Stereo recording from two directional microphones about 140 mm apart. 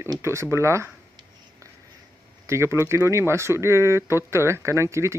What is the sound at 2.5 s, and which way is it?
Speech, 20° right (ahead or behind).